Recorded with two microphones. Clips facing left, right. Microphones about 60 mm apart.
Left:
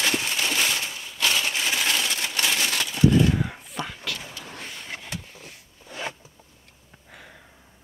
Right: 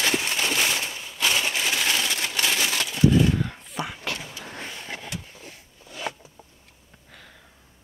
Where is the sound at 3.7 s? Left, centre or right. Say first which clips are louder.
Right 1 dB; centre.